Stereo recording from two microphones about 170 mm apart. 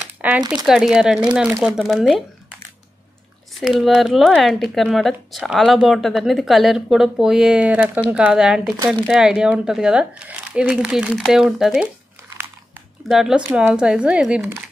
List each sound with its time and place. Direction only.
0.4 s speech: 25° right (ahead or behind)
0.7 s speech: 5° right (ahead or behind)
3.5 s speech: centre (ahead or behind)
13.1 s speech: 5° right (ahead or behind)